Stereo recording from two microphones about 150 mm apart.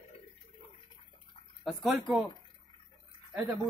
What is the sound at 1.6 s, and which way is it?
Speech, centre (ahead or behind).